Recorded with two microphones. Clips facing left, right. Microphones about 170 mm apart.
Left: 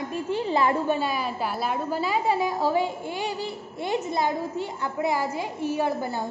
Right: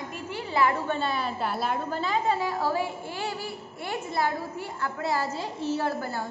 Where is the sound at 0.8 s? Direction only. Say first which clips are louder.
Left 3 dB; 10° left (ahead or behind).